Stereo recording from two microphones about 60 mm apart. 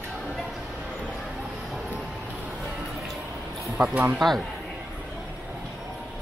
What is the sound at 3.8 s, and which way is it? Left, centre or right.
Speech, right.